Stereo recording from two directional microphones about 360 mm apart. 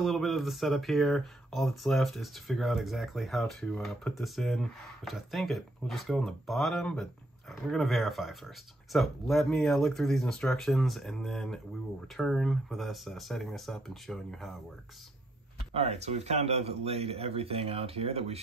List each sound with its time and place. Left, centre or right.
0.0 s speech: centre
15.7 s a man's voice: centre